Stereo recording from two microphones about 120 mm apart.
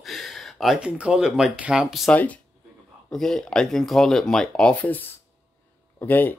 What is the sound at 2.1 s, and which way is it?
Speech, 10° left (ahead or behind).